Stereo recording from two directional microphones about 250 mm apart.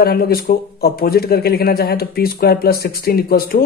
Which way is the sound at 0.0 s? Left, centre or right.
Left.